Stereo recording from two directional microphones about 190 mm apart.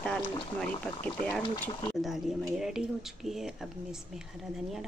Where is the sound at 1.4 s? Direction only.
25° left (ahead or behind).